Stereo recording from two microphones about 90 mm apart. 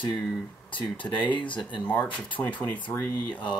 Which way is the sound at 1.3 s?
65° left (ahead or behind).